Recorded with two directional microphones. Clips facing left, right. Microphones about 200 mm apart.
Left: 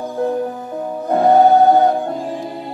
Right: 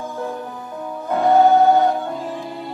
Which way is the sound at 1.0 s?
40° left (ahead or behind).